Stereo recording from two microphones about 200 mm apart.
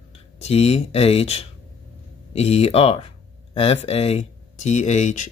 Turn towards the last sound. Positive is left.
turn(degrees=35)  # may be behind; listen again after turning